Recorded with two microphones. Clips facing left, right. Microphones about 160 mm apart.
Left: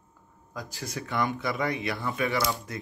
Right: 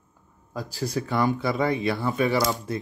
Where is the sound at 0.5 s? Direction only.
35° right (ahead or behind).